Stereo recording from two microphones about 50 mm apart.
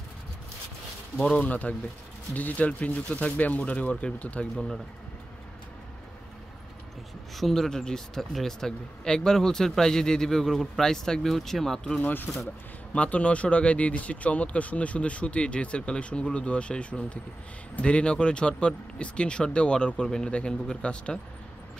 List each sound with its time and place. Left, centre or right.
1.4 s speech: left
7.3 s speech: centre
12.0 s speech: left
12.9 s speech: left